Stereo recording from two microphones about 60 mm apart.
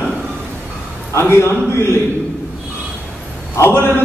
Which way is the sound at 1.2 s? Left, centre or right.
Left.